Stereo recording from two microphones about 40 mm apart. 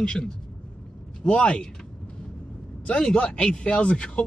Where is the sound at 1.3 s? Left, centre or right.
Left.